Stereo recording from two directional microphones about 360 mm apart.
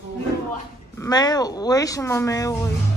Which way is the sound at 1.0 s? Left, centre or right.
Centre.